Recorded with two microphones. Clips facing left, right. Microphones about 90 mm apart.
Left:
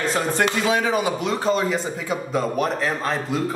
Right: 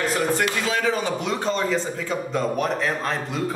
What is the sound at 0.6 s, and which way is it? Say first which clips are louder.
A woman's voice: left 3 dB; 20° left (ahead or behind).